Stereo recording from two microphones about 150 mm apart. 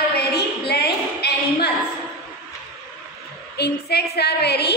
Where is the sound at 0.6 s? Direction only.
90° left.